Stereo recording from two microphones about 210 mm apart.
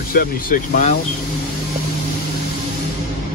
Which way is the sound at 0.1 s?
45° left (ahead or behind).